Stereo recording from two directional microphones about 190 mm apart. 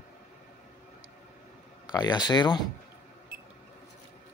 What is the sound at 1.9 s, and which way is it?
Speech, 20° left (ahead or behind).